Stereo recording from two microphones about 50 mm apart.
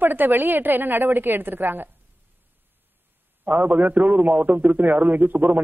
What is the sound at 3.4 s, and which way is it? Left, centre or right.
A woman's voice, right.